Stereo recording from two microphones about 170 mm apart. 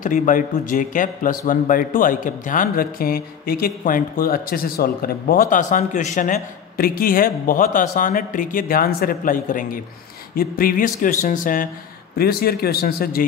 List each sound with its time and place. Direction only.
0.0 s a man's voice: 50° left (ahead or behind)
12.2 s speech: 65° left (ahead or behind)